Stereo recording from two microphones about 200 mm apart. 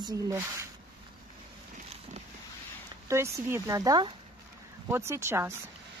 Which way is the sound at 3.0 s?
15° right (ahead or behind).